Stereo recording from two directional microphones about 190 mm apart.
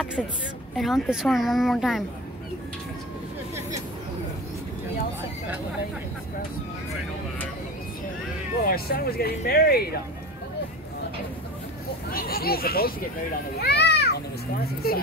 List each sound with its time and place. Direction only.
0.7 s speech: centre (ahead or behind)
8.6 s speech: 50° left (ahead or behind)
12.1 s speech: 50° left (ahead or behind)
13.6 s children playing: 60° left (ahead or behind)
14.8 s speech: 55° left (ahead or behind)